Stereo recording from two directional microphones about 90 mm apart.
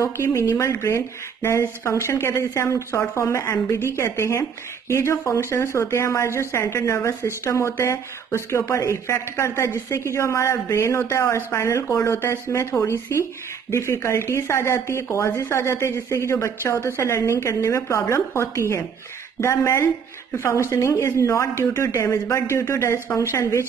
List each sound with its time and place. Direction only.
0.0 s speech: 30° left (ahead or behind)